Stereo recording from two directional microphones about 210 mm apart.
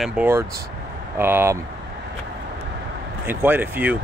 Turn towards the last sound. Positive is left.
turn(degrees=-10)  # may be behind; listen again after turning